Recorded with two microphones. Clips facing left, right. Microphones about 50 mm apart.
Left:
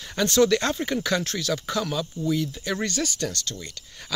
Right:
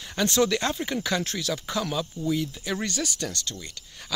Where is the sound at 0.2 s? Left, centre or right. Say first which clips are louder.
Left 3 dB; centre.